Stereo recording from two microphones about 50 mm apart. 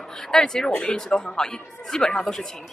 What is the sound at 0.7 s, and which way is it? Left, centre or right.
Speech, left.